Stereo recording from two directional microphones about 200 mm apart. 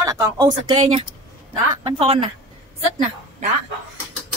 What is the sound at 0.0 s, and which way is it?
Speech, 20° right (ahead or behind).